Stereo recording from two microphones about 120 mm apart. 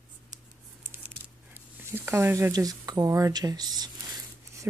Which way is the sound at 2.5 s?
30° right (ahead or behind).